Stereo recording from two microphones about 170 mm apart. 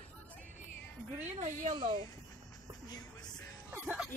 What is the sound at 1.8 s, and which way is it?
Speech, 25° right (ahead or behind).